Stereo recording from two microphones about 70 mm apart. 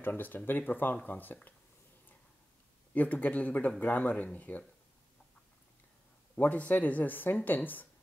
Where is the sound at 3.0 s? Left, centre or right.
Left.